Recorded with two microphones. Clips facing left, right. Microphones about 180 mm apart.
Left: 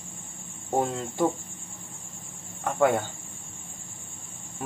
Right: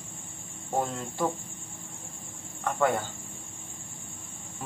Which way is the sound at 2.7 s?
20° left (ahead or behind).